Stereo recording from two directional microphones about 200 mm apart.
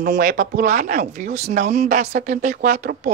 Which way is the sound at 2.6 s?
50° right (ahead or behind).